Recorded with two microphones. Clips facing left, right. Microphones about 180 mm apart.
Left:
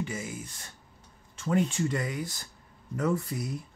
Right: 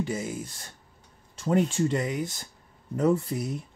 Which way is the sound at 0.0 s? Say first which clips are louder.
Right 5 dB; 35° right (ahead or behind).